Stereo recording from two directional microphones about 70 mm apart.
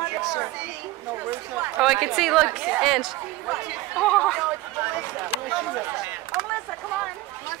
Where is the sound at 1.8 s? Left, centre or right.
Centre.